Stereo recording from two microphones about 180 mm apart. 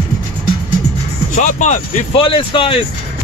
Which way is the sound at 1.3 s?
45° left (ahead or behind).